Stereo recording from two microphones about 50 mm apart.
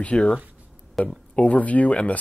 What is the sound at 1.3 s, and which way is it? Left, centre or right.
Speech, left.